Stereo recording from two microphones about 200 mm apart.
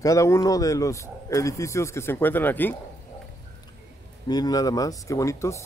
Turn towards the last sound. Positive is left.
turn(degrees=15)  # may be behind; listen again after turning